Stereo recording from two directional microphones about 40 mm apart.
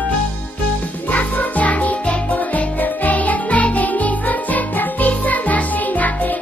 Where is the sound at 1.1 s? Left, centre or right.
Left.